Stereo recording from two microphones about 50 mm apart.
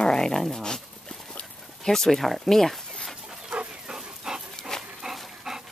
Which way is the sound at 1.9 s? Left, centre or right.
Centre.